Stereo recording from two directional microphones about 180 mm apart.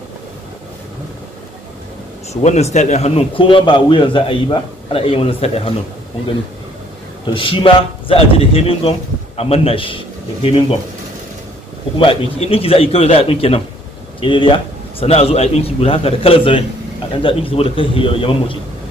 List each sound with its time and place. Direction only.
2.4 s a man's voice: 40° left (ahead or behind)
7.2 s a man's voice: 30° left (ahead or behind)
12.0 s a man's voice: 30° left (ahead or behind)